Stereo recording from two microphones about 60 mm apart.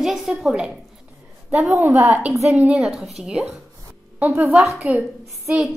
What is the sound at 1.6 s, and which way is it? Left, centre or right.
Speech, right.